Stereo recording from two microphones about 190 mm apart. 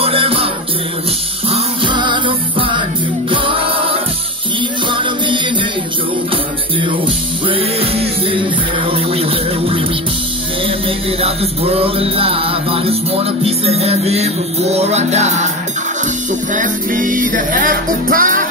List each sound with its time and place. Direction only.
0.0 s music: 30° right (ahead or behind)
1.5 s music: 25° right (ahead or behind)
7.4 s music: 30° right (ahead or behind)
11.1 s music: 30° right (ahead or behind)
16.5 s music: 45° right (ahead or behind)